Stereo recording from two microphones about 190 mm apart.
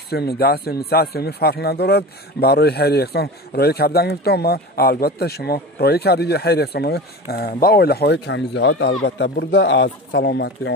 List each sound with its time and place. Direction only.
0.1 s a man's voice: 55° left (ahead or behind)